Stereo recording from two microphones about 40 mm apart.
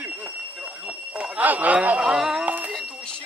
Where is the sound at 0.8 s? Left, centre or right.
Right.